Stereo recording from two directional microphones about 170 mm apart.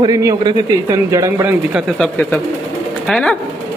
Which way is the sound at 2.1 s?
10° left (ahead or behind).